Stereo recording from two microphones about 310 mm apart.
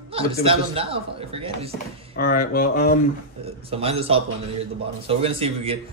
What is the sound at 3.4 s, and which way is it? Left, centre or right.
A man's voice, centre.